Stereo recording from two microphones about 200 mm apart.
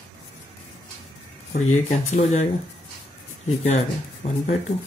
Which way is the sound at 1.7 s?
35° left (ahead or behind).